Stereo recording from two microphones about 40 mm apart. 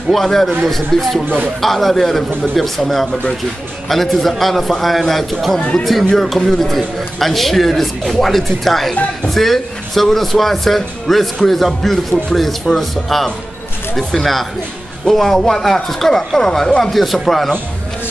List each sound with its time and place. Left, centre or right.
0.1 s a man's voice: centre
5.6 s speech: left
6.1 s a man's voice: centre
16.9 s a man's voice: centre